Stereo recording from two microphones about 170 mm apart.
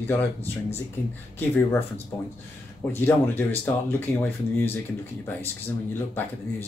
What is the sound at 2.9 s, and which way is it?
Speech, 10° left (ahead or behind).